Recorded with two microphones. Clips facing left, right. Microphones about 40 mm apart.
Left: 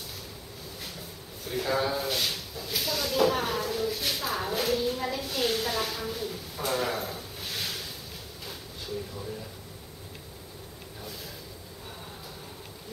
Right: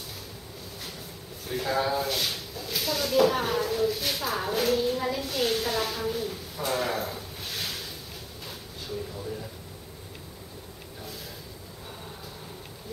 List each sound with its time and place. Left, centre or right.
1.5 s speech: centre